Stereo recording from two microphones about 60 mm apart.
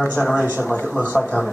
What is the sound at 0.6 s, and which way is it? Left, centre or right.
Speech, left.